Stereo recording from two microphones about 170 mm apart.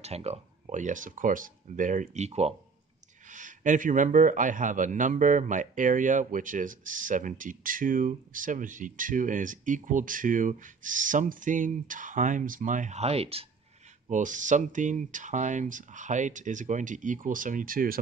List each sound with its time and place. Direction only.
0.0 s a man's voice: 40° right (ahead or behind)
14.0 s a man's voice: 45° right (ahead or behind)